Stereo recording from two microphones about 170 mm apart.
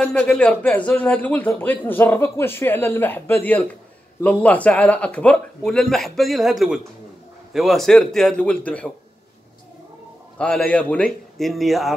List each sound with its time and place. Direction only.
0.0 s speech: 5° left (ahead or behind)
10.3 s speech: 5° left (ahead or behind)